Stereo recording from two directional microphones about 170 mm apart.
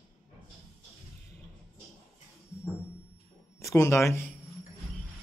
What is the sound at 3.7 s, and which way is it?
Speech, 15° left (ahead or behind).